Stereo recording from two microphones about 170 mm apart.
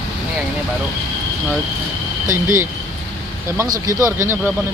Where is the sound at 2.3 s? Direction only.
15° right (ahead or behind).